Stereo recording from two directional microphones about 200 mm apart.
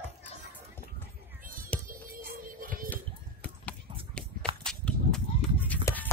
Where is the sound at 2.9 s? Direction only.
5° left (ahead or behind).